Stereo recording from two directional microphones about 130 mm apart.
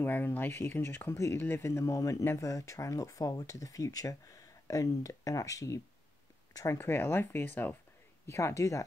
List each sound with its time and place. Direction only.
0.0 s speech: 15° left (ahead or behind)